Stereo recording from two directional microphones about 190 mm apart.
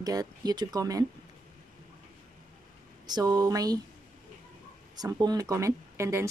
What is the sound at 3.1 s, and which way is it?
Speech, 20° right (ahead or behind).